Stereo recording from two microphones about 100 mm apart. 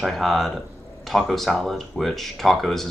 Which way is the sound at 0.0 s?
Centre (ahead or behind).